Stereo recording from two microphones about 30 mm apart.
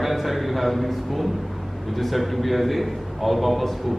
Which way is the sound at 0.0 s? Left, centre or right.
Centre.